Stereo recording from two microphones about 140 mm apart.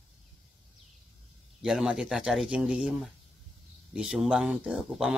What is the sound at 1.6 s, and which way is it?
Speech, 5° right (ahead or behind).